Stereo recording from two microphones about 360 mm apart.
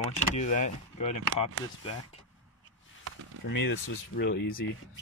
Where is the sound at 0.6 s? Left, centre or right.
Centre.